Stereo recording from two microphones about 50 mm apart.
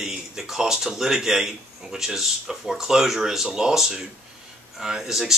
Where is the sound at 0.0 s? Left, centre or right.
Centre.